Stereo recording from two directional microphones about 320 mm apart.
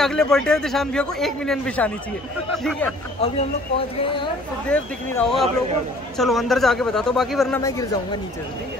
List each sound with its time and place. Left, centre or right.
0.0 s a man's voice: centre
3.2 s speech: centre
4.6 s a man's voice: centre